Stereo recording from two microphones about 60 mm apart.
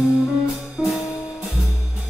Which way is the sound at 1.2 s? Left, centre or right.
Centre.